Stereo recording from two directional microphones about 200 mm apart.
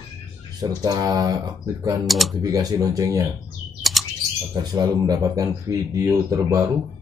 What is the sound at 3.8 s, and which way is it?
Chirp, centre (ahead or behind).